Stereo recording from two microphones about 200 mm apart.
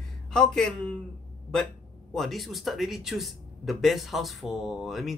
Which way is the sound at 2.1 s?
Centre (ahead or behind).